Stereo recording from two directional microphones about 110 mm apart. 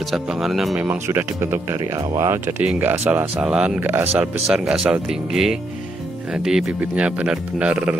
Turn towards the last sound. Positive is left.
turn(degrees=-10)  # may be behind; listen again after turning